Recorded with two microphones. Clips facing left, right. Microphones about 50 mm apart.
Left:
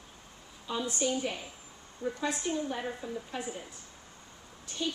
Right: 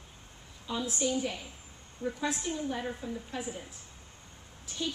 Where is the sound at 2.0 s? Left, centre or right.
Centre.